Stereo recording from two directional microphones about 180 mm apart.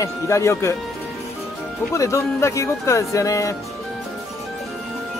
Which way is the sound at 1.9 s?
15° left (ahead or behind).